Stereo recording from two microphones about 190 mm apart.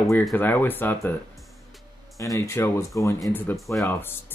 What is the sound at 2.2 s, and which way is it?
Speech, 15° left (ahead or behind).